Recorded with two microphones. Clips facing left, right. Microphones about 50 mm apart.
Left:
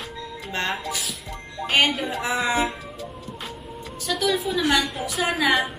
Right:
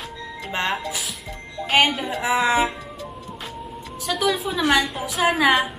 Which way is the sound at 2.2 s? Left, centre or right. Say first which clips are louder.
Right 5 dB; centre.